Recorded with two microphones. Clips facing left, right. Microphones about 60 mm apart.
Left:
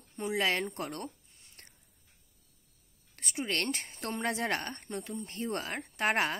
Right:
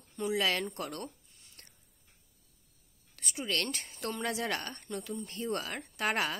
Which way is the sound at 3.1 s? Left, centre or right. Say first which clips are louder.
Left 1 dB; left.